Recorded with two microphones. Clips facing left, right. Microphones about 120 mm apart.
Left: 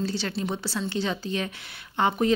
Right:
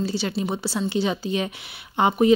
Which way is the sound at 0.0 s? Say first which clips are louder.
Right 3 dB; 10° right (ahead or behind).